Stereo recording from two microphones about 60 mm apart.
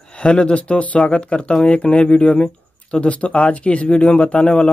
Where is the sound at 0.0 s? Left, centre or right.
Centre.